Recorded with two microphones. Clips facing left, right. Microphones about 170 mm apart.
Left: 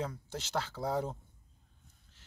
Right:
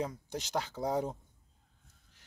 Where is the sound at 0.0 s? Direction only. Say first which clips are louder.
Right 2 dB; 15° right (ahead or behind).